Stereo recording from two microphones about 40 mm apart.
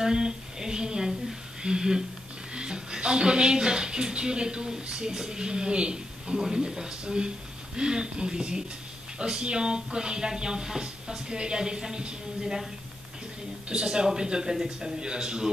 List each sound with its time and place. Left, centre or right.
0.0 s speech: centre
13.7 s speech: right